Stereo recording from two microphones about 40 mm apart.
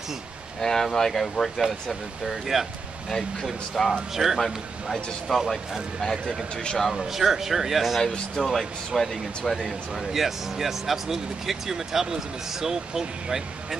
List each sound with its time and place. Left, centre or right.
0.6 s speech: centre
2.5 s a man's voice: centre
3.1 s speech: centre
3.7 s speech: centre
4.1 s a man's voice: centre
6.5 s a man's voice: left
6.8 s a man's voice: centre
8.0 s speech: centre
8.5 s speech: centre